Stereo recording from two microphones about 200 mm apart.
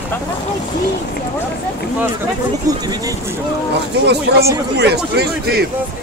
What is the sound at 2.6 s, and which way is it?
Speech, 20° right (ahead or behind).